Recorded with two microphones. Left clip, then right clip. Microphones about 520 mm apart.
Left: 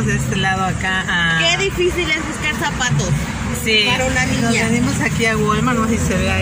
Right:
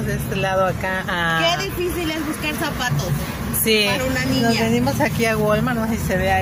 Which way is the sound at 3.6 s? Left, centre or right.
Right.